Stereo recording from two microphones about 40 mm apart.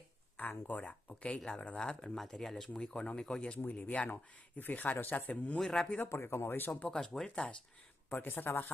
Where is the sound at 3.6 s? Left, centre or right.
Left.